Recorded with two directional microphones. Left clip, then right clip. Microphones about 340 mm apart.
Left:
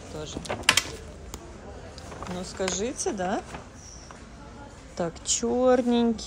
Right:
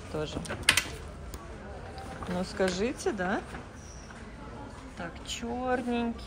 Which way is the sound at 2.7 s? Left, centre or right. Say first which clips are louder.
Left 2 dB; centre.